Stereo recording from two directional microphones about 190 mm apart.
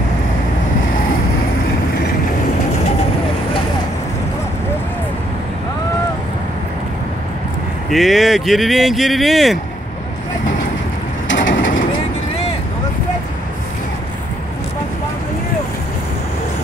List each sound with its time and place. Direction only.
7.9 s speech: centre (ahead or behind)
11.2 s bird: 75° left (ahead or behind)